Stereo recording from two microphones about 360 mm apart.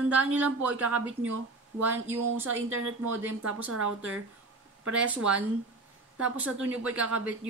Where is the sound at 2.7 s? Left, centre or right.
Right.